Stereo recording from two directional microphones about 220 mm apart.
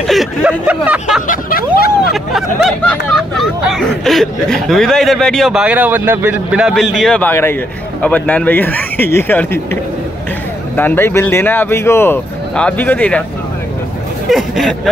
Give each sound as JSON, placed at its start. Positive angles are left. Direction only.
{"t": 0.0, "sound": "speech", "side_deg": 0}
{"t": 1.2, "sound": "speech", "side_deg": 40}
{"t": 2.3, "sound": "speech", "side_deg": 5}
{"t": 10.8, "sound": "speech", "side_deg": 10}
{"t": 14.3, "sound": "speech", "side_deg": 0}